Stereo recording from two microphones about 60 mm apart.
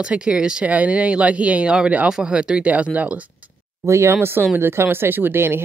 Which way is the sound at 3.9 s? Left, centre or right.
Right.